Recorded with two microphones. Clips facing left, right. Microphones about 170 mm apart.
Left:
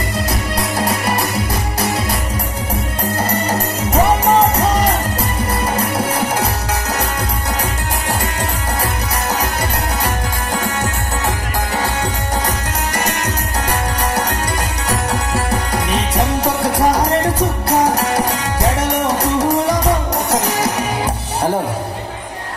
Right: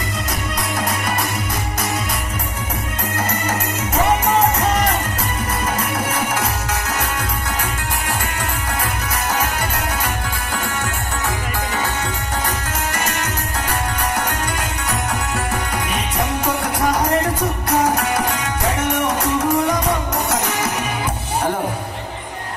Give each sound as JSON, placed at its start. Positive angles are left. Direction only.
{"t": 0.6, "sound": "music", "side_deg": 30}
{"t": 3.2, "sound": "music", "side_deg": 35}
{"t": 12.4, "sound": "music", "side_deg": 35}
{"t": 14.9, "sound": "music", "side_deg": 35}